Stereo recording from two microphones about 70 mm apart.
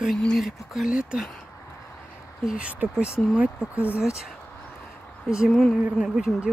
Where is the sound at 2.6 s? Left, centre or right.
Centre.